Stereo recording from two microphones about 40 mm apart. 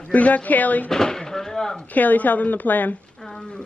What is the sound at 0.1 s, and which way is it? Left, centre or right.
Speech, left.